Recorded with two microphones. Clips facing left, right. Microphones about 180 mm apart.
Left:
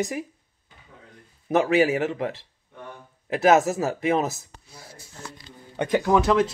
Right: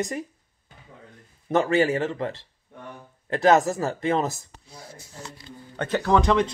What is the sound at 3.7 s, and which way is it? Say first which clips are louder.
Speech: left 1 dB; 5° left (ahead or behind).